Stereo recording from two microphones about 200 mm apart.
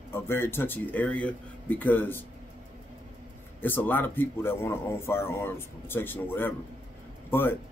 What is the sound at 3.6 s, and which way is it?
A man's voice, 10° left (ahead or behind).